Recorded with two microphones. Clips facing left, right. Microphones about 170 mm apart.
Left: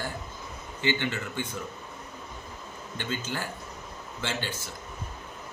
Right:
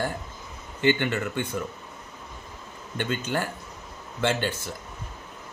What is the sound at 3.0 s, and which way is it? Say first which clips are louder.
Speech: right 6 dB; 60° right (ahead or behind).